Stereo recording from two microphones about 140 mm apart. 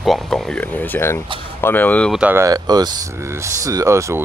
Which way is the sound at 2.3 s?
25° right (ahead or behind).